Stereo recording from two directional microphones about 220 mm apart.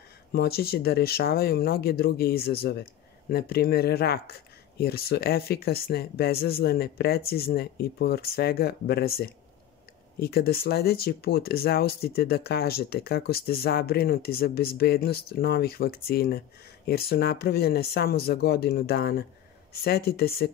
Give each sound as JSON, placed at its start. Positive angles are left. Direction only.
{"t": 0.3, "sound": "speech", "side_deg": 45}
{"t": 10.2, "sound": "speech", "side_deg": 45}